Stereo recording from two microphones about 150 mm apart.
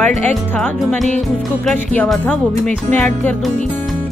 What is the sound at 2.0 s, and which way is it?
Speech, 5° left (ahead or behind).